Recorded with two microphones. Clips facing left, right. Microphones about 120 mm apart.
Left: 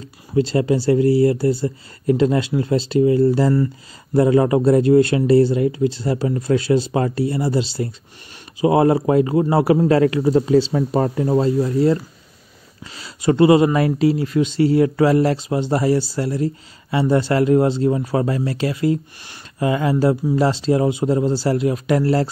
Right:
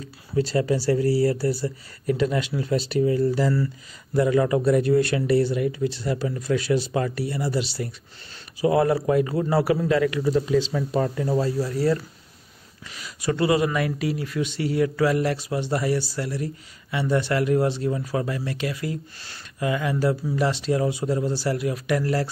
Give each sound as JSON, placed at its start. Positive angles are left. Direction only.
{"t": 0.3, "sound": "speech", "side_deg": 25}
{"t": 9.9, "sound": "speech", "side_deg": 40}